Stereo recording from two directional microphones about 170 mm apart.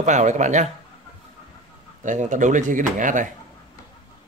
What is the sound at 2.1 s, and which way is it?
A man's voice, 45° right (ahead or behind).